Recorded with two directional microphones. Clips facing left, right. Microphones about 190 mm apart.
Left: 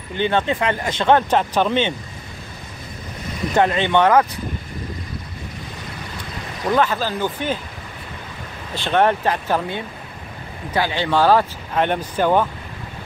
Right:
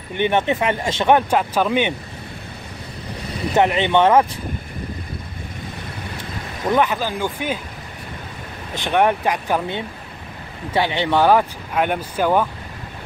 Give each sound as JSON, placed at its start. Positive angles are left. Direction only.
{"t": 0.1, "sound": "speech", "side_deg": -20}
{"t": 3.5, "sound": "speech", "side_deg": -20}
{"t": 6.1, "sound": "speech", "side_deg": -20}
{"t": 8.7, "sound": "speech", "side_deg": -15}